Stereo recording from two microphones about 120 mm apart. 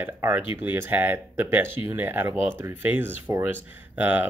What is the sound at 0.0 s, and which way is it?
Speech, 20° right (ahead or behind).